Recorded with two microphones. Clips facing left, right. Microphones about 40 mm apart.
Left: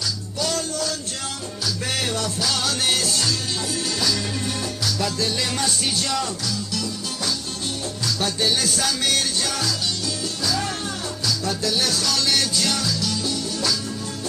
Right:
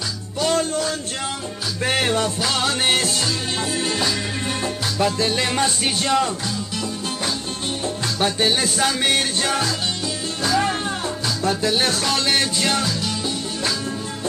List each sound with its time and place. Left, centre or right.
0.4 s music: right
8.2 s music: right